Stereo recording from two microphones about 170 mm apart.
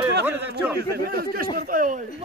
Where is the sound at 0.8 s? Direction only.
65° right (ahead or behind).